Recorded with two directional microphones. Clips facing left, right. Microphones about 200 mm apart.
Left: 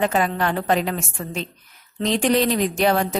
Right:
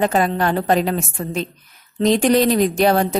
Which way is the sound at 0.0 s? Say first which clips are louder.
Right 3 dB; 40° right (ahead or behind).